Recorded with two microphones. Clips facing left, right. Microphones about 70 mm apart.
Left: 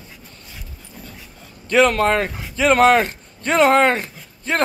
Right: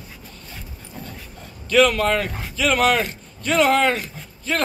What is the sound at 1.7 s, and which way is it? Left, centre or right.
Speech, left.